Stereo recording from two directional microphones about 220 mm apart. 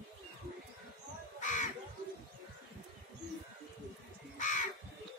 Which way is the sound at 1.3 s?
35° left (ahead or behind).